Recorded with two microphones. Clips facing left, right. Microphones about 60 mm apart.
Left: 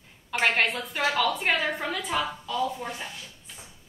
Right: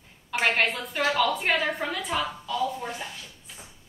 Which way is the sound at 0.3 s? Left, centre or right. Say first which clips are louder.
Even; centre.